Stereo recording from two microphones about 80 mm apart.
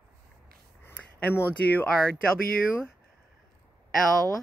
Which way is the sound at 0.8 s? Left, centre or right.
Left.